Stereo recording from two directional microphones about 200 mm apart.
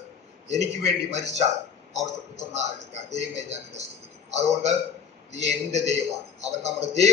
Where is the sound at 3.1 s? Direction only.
35° right (ahead or behind).